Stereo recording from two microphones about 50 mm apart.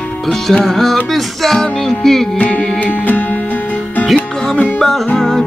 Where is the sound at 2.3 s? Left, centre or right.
Left.